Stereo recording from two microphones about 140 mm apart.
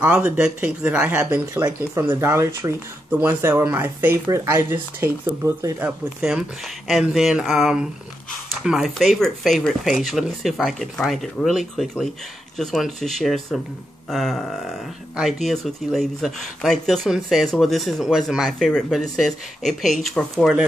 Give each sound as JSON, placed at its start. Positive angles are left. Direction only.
{"t": 0.0, "sound": "speech", "side_deg": -10}
{"t": 5.9, "sound": "speech", "side_deg": -5}